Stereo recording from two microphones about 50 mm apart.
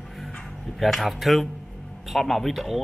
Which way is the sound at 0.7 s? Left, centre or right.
Centre.